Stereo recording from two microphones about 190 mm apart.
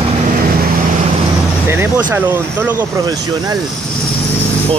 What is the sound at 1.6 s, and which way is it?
Vehicle, 10° right (ahead or behind).